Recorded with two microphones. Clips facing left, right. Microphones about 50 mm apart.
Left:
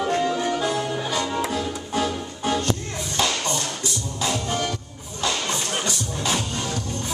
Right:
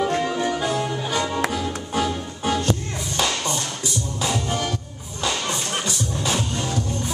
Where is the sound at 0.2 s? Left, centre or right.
Centre.